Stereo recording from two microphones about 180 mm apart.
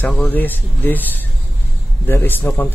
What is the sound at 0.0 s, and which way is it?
A man's voice, 10° left (ahead or behind).